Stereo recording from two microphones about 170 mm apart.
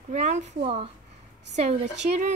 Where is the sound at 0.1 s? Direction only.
45° right (ahead or behind).